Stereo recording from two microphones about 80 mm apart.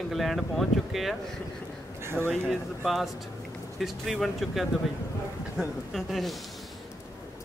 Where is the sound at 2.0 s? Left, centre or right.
Right.